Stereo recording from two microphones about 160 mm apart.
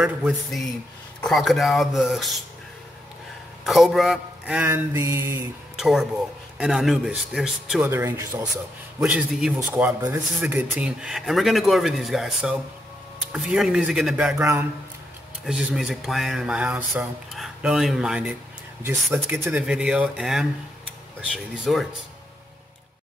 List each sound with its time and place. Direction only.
0.0 s speech: centre (ahead or behind)
3.6 s mantra: centre (ahead or behind); by 5.5 s 15° right (ahead or behind)
5.8 s speech: centre (ahead or behind)
7.8 s mantra: 15° right (ahead or behind)
9.0 s speech: 5° right (ahead or behind)
9.6 s mantra: 10° right (ahead or behind)
10.4 s speech: 10° right (ahead or behind)
14.4 s mantra: 15° right (ahead or behind)
15.4 s speech: centre (ahead or behind)
19.1 s mantra: 15° right (ahead or behind)
19.5 s speech: 5° right (ahead or behind)
21.7 s speech: centre (ahead or behind)